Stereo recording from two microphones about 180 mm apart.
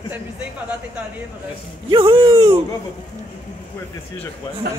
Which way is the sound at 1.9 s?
30° right (ahead or behind).